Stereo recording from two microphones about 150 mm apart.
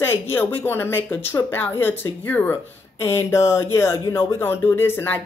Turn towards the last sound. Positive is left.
turn(degrees=15)  # may be behind; listen again after turning